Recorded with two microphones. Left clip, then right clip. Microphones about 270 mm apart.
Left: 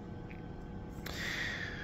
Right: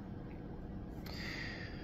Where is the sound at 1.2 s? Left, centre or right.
Left.